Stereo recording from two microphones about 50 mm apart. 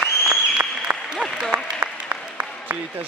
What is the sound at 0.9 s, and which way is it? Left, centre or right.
Applause, right.